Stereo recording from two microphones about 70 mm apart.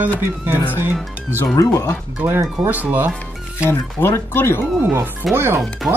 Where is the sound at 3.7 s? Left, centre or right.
Left.